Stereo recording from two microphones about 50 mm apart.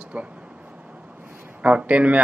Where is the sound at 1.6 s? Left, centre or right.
Right.